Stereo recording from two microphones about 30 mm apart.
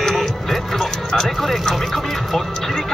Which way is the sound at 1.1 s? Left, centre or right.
Centre.